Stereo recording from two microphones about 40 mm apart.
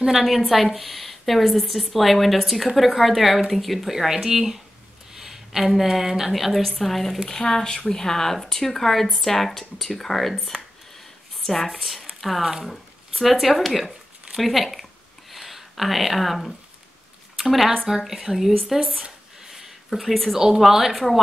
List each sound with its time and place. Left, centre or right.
0.0 s a woman's voice: centre
19.4 s a sound: centre
20.3 s speech: centre